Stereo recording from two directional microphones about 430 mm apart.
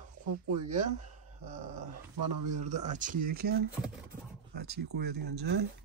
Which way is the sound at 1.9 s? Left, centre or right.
Right.